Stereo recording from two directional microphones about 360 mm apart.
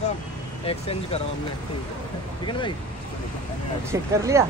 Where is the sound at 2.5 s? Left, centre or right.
Centre.